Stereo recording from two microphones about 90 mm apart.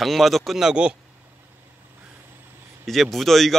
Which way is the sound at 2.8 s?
Centre (ahead or behind).